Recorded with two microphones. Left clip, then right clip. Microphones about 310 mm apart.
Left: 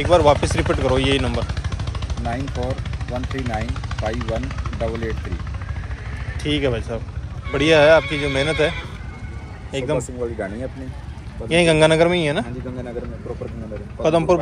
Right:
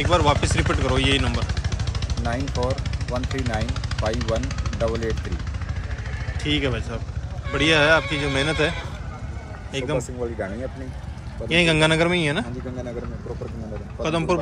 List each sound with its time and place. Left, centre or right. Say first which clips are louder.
0.0 s speech: left 5 dB; centre
1.3 s speech: left 3 dB; centre
6.4 s speech: left 3 dB; centre
8.0 s speech: left 2 dB; right
8.4 s a man's voice: left 3 dB; centre
11.4 s a man's voice: left 4 dB; centre
14.0 s speech: left 6 dB; centre